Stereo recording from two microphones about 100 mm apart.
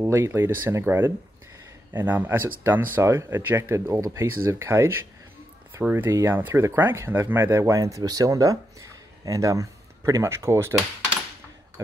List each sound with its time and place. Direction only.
0.0 s speech: 30° right (ahead or behind)
6.0 s speech: 25° right (ahead or behind)